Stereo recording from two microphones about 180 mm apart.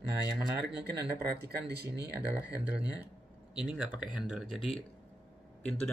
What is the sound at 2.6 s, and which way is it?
Speech, 10° right (ahead or behind).